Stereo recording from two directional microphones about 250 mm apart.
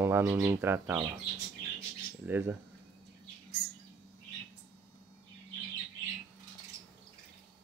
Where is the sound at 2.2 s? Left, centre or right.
Centre.